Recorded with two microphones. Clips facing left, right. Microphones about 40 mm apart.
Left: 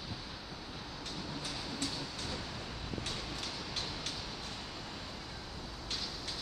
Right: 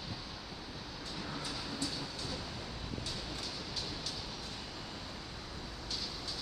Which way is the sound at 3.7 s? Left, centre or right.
Left.